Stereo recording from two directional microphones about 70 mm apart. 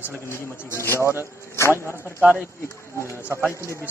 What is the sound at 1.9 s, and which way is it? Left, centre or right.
A man's voice, right.